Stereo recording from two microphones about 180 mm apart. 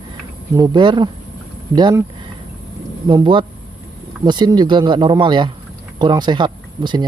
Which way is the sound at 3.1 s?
25° right (ahead or behind).